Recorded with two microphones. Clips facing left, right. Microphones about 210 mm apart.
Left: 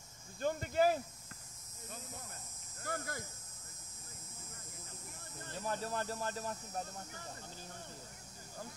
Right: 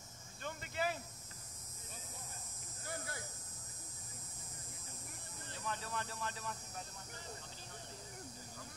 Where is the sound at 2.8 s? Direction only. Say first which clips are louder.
Left 5 dB; 45° left (ahead or behind).